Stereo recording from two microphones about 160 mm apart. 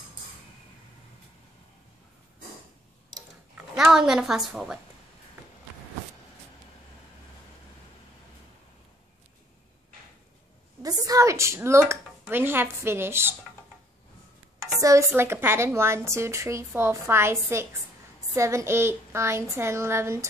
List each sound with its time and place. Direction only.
3.5 s speech: 5° right (ahead or behind)
10.8 s a sound: 25° right (ahead or behind)
11.9 s speech: 15° right (ahead or behind)
14.8 s a woman's voice: 20° right (ahead or behind)